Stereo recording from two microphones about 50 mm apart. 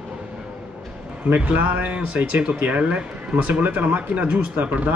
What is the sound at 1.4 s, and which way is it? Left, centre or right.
Speech, right.